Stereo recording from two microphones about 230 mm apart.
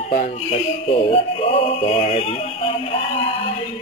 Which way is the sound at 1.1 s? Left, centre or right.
Left.